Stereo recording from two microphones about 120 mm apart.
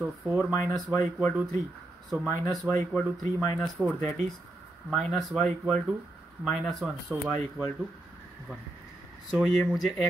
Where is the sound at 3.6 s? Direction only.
Centre (ahead or behind).